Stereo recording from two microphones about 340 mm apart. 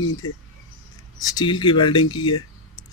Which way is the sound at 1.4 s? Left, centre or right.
Centre.